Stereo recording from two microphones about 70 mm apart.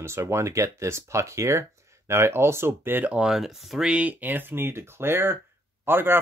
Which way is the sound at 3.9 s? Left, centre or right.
Centre.